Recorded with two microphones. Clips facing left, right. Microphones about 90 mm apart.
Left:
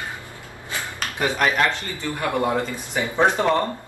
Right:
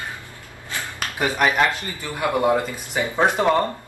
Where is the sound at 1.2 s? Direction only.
10° right (ahead or behind).